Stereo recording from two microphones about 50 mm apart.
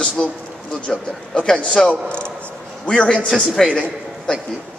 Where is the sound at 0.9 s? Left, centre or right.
Centre.